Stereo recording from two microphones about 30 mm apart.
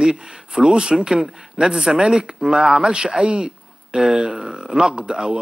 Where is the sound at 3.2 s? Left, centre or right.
Right.